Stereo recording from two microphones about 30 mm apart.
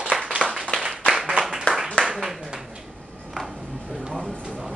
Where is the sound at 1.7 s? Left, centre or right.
Left.